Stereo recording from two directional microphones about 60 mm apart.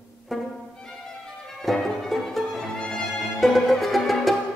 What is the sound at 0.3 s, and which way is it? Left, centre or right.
Music, centre.